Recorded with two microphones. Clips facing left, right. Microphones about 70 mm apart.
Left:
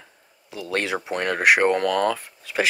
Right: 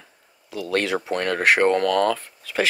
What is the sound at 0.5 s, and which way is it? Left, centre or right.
Speech, left.